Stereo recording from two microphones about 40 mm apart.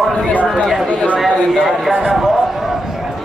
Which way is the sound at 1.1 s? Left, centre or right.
Centre.